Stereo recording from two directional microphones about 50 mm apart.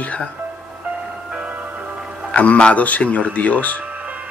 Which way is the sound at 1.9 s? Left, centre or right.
Centre.